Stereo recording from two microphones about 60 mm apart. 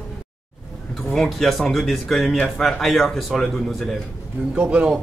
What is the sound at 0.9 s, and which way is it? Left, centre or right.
Speech, centre.